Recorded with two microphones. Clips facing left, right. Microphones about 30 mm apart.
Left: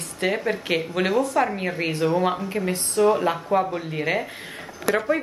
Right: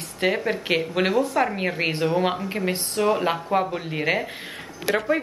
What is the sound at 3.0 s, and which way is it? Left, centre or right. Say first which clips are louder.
Speech: left 3 dB; centre.